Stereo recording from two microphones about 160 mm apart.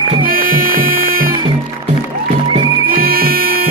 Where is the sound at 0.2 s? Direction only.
60° right (ahead or behind).